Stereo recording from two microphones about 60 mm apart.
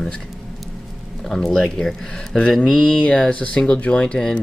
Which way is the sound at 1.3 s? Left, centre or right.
Centre.